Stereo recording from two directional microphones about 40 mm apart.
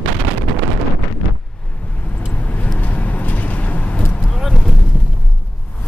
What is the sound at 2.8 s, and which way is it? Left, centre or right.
Vehicle, left.